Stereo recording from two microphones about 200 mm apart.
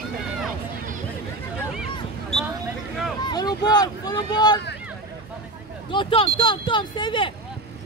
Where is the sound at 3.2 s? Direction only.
20° left (ahead or behind).